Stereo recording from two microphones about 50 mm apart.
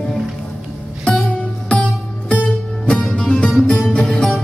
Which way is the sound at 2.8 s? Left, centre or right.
Left.